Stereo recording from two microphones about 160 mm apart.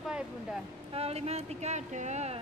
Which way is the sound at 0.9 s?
40° right (ahead or behind).